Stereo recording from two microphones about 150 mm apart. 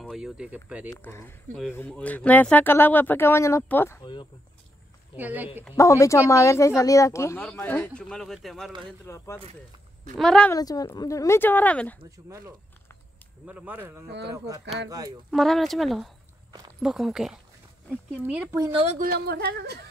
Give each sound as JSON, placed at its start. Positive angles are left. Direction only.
{"t": 0.0, "sound": "speech", "side_deg": 0}
{"t": 1.0, "sound": "speech", "side_deg": 15}
{"t": 4.0, "sound": "speech", "side_deg": 30}
{"t": 5.1, "sound": "a man's voice", "side_deg": -10}
{"t": 5.8, "sound": "a woman's voice", "side_deg": 20}
{"t": 9.0, "sound": "speech", "side_deg": 20}
{"t": 10.1, "sound": "speech", "side_deg": 5}
{"t": 10.5, "sound": "speech", "side_deg": 25}
{"t": 13.5, "sound": "a man's voice", "side_deg": -10}
{"t": 15.3, "sound": "a man's voice", "side_deg": 0}
{"t": 18.7, "sound": "speech", "side_deg": -40}
{"t": 18.9, "sound": "speech", "side_deg": -75}